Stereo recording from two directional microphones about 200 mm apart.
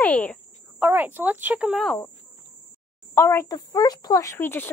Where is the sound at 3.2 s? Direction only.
15° left (ahead or behind).